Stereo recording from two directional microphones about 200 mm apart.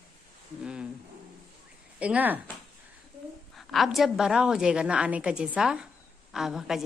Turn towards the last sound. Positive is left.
turn(degrees=0)  # may be behind; listen again after turning